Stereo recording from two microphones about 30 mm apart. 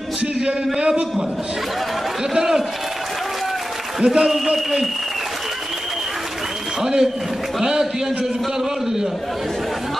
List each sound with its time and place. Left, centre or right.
0.7 s a man's voice: right
4.0 s a man's voice: right
6.8 s a man's voice: centre